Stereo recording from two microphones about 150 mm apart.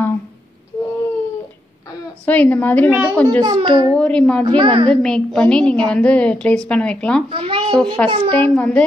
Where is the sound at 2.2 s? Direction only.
10° left (ahead or behind).